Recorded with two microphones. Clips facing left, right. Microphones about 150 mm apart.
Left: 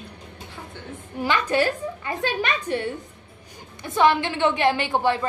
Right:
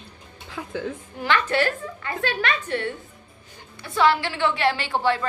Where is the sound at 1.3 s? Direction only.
15° left (ahead or behind).